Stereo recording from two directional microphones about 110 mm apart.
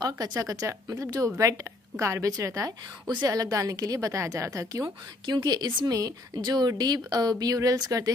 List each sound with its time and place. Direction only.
0.0 s a woman's voice: 35° right (ahead or behind)
5.2 s a woman's voice: 40° right (ahead or behind)